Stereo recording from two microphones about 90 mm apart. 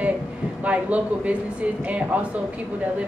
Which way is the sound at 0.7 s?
15° right (ahead or behind).